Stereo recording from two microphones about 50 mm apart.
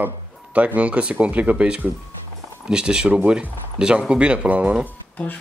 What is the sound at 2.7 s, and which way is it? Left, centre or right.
Speech, centre.